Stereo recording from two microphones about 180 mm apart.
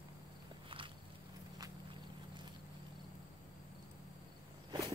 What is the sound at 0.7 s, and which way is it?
Walk, 30° right (ahead or behind).